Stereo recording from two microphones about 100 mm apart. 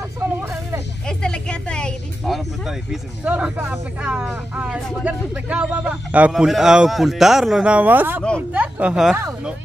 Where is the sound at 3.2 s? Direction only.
15° right (ahead or behind).